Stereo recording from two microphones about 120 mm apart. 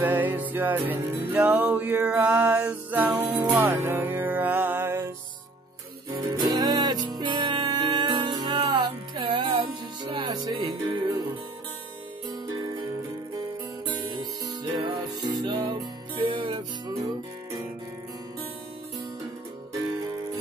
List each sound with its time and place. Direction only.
0.0 s music: 15° right (ahead or behind)
6.1 s music: 35° right (ahead or behind)
13.8 s music: 40° right (ahead or behind)